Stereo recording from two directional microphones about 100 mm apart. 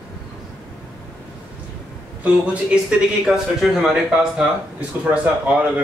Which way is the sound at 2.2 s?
10° right (ahead or behind).